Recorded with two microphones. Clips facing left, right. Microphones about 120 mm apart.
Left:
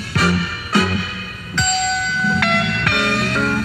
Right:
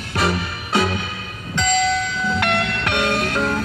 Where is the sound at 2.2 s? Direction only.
20° right (ahead or behind).